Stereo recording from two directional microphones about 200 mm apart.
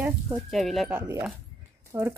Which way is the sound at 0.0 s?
Centre (ahead or behind).